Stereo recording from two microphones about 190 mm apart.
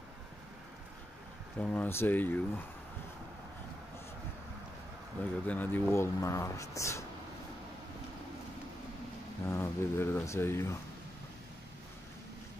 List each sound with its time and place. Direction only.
1.6 s speech: 10° left (ahead or behind)
5.2 s speech: 10° left (ahead or behind)
9.5 s speech: 10° left (ahead or behind)